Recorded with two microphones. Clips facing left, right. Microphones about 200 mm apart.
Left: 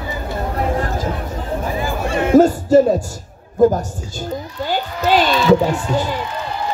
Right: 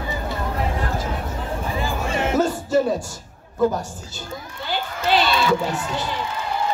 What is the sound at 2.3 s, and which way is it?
Music, 45° left (ahead or behind).